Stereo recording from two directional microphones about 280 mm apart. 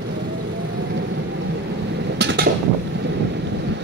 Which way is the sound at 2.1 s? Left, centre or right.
Right.